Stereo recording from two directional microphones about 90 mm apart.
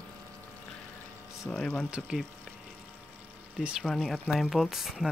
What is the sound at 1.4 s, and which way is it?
Speech, 10° left (ahead or behind).